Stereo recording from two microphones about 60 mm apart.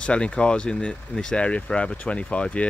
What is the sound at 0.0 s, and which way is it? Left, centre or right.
Speech, centre.